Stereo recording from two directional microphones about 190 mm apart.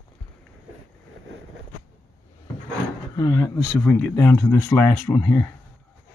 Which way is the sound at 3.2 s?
15° left (ahead or behind).